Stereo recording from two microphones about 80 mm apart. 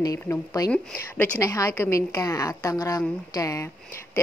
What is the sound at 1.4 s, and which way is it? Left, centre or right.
A woman's voice, left.